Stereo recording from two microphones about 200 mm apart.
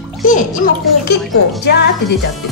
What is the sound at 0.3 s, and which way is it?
Speech, 40° left (ahead or behind).